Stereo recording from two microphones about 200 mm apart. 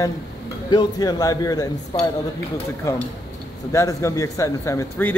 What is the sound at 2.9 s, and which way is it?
A man's voice, 15° left (ahead or behind).